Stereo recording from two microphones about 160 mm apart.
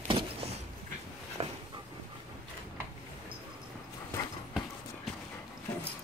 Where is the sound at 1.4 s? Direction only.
35° right (ahead or behind).